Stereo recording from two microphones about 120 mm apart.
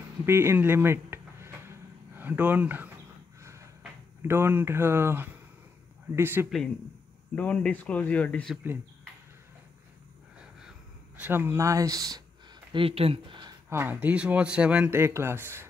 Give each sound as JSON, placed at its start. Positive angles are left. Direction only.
{"t": 0.2, "sound": "a sound", "side_deg": -20}
{"t": 4.2, "sound": "speech", "side_deg": -20}
{"t": 7.3, "sound": "speech", "side_deg": 10}
{"t": 11.1, "sound": "speech", "side_deg": -15}
{"t": 12.7, "sound": "speech", "side_deg": -50}
{"t": 13.7, "sound": "speech", "side_deg": -20}
{"t": 15.0, "sound": "speech", "side_deg": -20}